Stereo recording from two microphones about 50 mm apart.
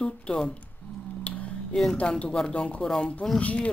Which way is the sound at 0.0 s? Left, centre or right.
Centre.